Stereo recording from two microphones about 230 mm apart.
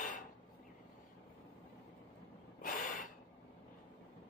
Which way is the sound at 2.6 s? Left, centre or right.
Left.